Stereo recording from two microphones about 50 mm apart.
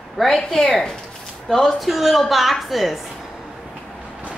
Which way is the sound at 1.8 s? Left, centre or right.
Centre.